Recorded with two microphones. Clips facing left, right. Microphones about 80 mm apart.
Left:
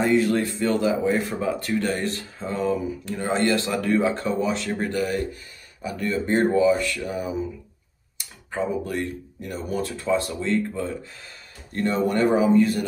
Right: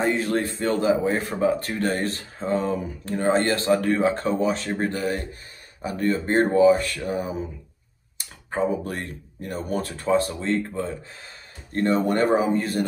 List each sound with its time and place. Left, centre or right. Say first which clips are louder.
0.0 s speech: left 3 dB; right